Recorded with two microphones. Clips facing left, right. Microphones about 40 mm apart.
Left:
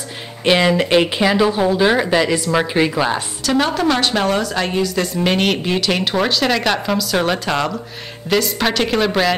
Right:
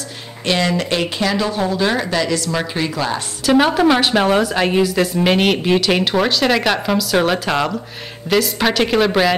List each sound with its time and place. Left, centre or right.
0.5 s speech: centre
3.4 s a woman's voice: centre